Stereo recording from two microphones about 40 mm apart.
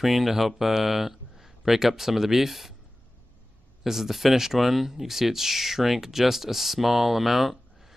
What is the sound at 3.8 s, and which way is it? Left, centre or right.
Speech, centre.